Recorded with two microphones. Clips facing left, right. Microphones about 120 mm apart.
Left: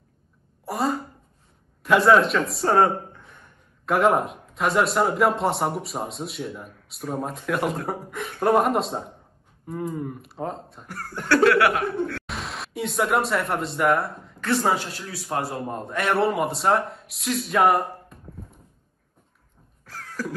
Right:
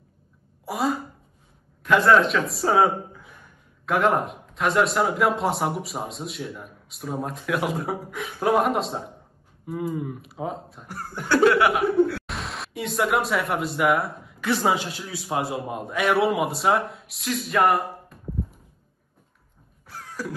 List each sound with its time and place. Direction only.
0.7 s speech: centre (ahead or behind)
10.9 s speech: 15° right (ahead or behind)
12.3 s a man's voice: centre (ahead or behind)
19.9 s a sound: 15° right (ahead or behind)